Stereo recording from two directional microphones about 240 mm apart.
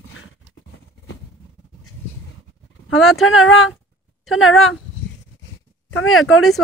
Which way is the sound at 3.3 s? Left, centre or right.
Left.